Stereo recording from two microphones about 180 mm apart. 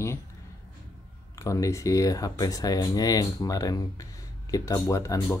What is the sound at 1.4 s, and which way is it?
Speech, 15° left (ahead or behind).